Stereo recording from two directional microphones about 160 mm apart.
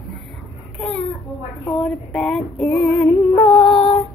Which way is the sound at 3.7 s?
35° left (ahead or behind).